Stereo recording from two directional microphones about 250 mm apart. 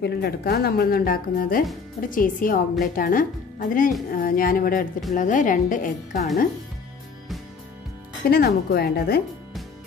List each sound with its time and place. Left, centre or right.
0.0 s a woman's voice: left
8.3 s a woman's voice: left